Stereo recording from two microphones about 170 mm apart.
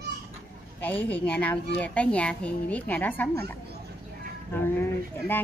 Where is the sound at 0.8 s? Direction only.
10° left (ahead or behind).